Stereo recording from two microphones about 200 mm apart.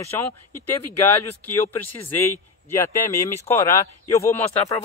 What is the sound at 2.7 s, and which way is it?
Speech, 15° left (ahead or behind).